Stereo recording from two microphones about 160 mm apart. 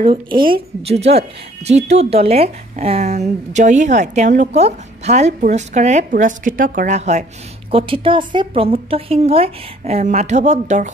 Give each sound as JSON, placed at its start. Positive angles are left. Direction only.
{"t": 0.0, "sound": "speech", "side_deg": -30}
{"t": 7.7, "sound": "a woman's voice", "side_deg": -35}